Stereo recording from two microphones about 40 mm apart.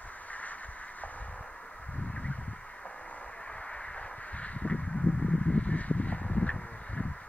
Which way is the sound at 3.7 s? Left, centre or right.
Left.